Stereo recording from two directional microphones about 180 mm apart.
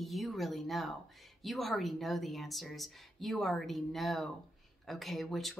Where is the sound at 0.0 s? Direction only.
Centre (ahead or behind).